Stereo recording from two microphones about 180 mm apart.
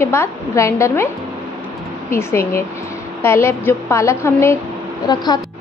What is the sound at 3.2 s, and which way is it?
A woman's voice, 15° left (ahead or behind).